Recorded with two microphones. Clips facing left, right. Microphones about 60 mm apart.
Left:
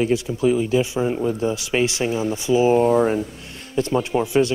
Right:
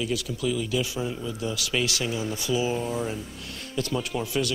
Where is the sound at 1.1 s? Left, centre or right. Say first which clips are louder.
Left 11 dB; left.